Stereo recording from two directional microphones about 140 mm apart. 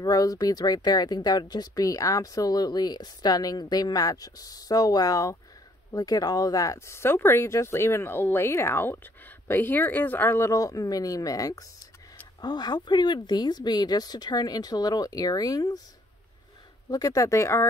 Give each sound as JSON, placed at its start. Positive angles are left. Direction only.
{"t": 0.0, "sound": "speech", "side_deg": 25}
{"t": 16.9, "sound": "speech", "side_deg": 25}